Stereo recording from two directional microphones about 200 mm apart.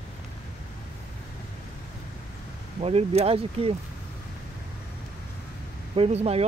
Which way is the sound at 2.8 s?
30° right (ahead or behind).